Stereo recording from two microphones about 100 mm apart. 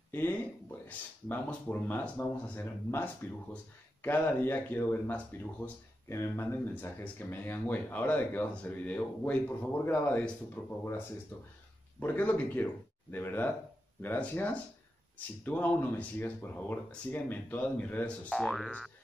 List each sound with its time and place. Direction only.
0.1 s speech: 20° left (ahead or behind)
12.0 s speech: 20° left (ahead or behind)
18.3 s boing: centre (ahead or behind)